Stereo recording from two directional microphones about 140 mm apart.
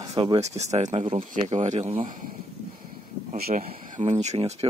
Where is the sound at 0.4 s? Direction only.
50° right (ahead or behind).